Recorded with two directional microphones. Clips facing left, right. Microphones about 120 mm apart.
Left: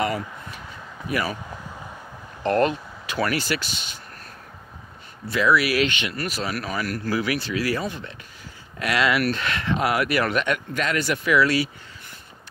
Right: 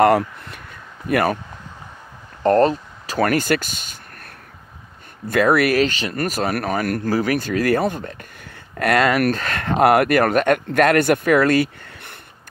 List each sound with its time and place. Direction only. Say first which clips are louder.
0.0 s speech: right 11 dB; 60° right (ahead or behind)
2.4 s speech: right 6 dB; 35° right (ahead or behind); by 12.2 s 60° right (ahead or behind)